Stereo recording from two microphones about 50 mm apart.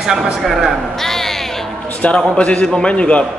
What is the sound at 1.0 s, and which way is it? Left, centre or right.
Speech, centre.